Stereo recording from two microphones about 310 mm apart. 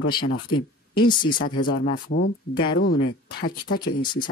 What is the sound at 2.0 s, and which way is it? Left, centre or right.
Speech, left.